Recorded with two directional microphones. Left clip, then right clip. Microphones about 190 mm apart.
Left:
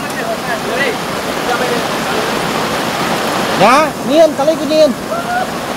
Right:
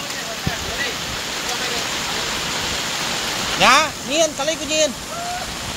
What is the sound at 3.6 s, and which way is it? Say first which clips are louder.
Speech: left 4 dB; centre (ahead or behind).